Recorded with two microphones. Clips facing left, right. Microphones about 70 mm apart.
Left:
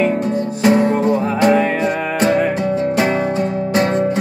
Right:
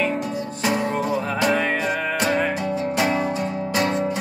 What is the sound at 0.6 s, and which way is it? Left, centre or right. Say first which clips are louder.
Music: left 9 dB; left.